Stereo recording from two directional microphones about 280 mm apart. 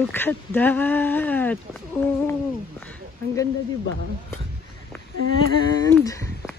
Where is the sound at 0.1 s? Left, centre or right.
Centre.